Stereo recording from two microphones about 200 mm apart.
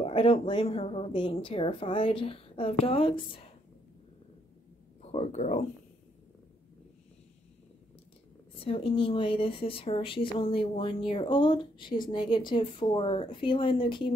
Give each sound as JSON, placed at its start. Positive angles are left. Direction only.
{"t": 0.0, "sound": "speech", "side_deg": 30}
{"t": 5.0, "sound": "speech", "side_deg": 30}
{"t": 8.5, "sound": "speech", "side_deg": 25}